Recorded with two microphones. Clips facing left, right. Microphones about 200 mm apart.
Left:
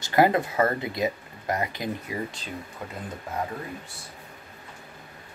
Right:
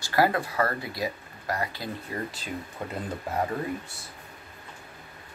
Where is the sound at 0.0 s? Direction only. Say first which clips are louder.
Left 3 dB; 20° left (ahead or behind).